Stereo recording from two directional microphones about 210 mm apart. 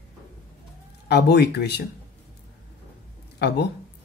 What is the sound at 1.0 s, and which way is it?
Speech, 50° left (ahead or behind).